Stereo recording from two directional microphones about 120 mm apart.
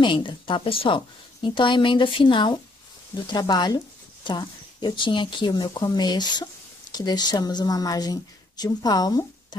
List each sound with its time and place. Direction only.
0.0 s a woman's voice: 45° left (ahead or behind)